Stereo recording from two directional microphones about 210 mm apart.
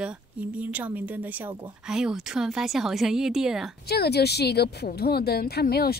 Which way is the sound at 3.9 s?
50° left (ahead or behind).